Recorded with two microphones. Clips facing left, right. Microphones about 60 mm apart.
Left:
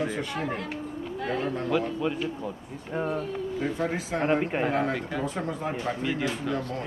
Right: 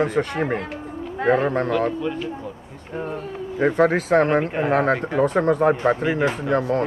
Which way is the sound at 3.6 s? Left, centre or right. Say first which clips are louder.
Right 14 dB; right.